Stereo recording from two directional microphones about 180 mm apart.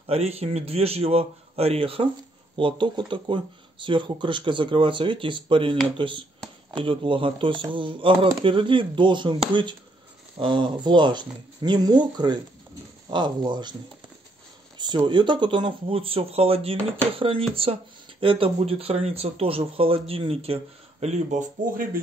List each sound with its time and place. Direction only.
0.0 s speech: 35° right (ahead or behind)
14.8 s speech: 25° right (ahead or behind); by 22.0 s 50° right (ahead or behind)